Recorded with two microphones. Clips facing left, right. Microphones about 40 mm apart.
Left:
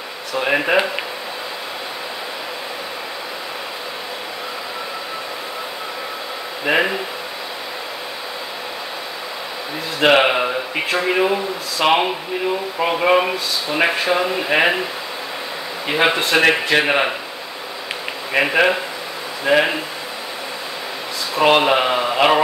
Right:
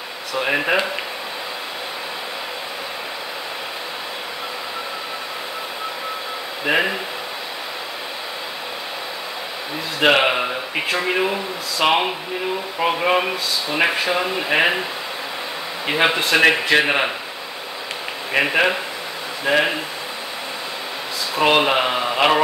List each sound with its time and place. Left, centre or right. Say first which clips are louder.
0.3 s speech: left 2 dB; centre
6.6 s speech: left 2 dB; centre
9.9 s speech: left 2 dB; centre
15.9 s speech: left 1 dB; centre
18.3 s speech: left 2 dB; centre
21.4 s speech: left 2 dB; centre